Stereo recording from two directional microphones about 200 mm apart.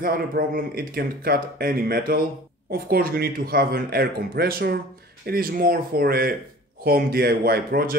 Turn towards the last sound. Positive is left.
turn(degrees=-50)  # may be behind; listen again after turning